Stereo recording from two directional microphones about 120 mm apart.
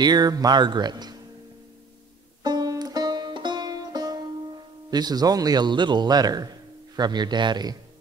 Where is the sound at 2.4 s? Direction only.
35° right (ahead or behind).